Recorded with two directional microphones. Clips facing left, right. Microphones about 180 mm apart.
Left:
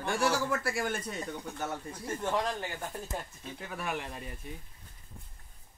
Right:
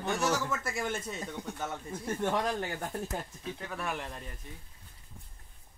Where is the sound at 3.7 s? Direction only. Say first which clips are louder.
Left 2 dB; 5° left (ahead or behind).